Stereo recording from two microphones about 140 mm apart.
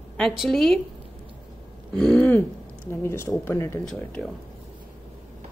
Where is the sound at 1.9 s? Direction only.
5° left (ahead or behind).